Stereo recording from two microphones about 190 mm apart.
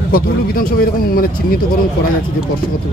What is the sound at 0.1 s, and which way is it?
Speech, 50° left (ahead or behind).